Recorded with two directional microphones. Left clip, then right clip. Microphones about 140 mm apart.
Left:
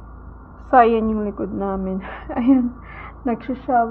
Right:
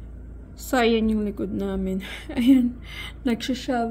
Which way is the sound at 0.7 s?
40° right (ahead or behind).